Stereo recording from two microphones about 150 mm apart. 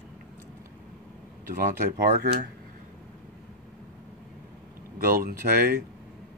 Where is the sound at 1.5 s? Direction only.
70° right (ahead or behind).